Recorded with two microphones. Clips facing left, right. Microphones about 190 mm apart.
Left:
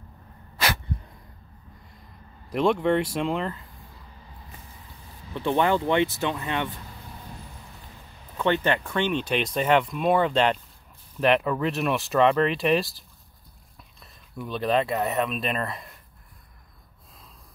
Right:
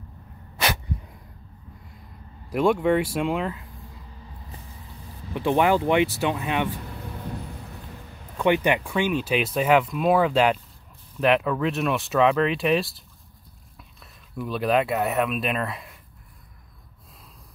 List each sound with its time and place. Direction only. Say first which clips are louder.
2.5 s speech: right 1 dB; 5° right (ahead or behind)
5.3 s speech: right 2 dB; 15° right (ahead or behind)
8.4 s speech: right 3 dB; 15° right (ahead or behind)